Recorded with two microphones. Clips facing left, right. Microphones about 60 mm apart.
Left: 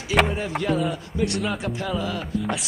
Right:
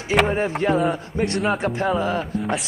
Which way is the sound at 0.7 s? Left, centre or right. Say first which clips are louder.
Right 3 dB; right.